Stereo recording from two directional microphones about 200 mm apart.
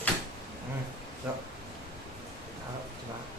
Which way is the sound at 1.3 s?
10° right (ahead or behind).